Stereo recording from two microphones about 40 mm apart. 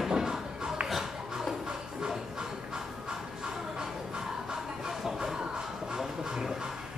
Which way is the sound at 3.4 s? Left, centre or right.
Centre.